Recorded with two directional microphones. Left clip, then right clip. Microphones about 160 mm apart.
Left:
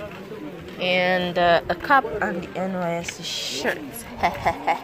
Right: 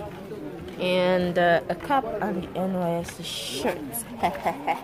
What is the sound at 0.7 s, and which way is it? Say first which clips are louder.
Speech: left 2 dB; 15° right (ahead or behind).